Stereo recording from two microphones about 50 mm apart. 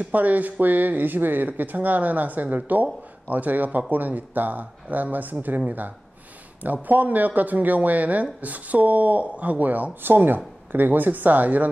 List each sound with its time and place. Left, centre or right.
0.0 s speech: right
6.6 s speech: right